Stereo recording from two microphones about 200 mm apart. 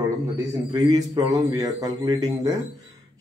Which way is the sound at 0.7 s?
20° right (ahead or behind).